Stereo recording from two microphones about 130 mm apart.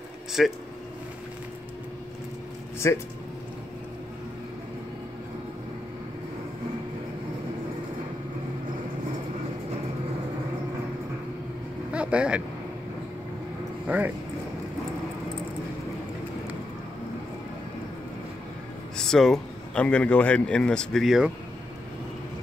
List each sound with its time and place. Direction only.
0.4 s speech: centre (ahead or behind)
2.8 s speech: 20° left (ahead or behind)
11.9 s vehicle: 10° right (ahead or behind)
13.8 s speech: 10° right (ahead or behind)
18.9 s a man's voice: 5° left (ahead or behind)